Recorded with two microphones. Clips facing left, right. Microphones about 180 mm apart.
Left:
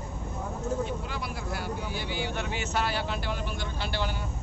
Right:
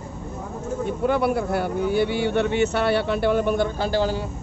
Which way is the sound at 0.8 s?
55° right (ahead or behind).